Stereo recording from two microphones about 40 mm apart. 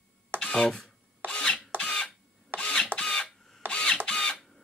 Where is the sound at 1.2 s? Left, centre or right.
Right.